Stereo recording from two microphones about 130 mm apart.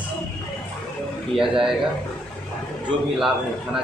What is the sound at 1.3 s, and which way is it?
Speech, 5° right (ahead or behind).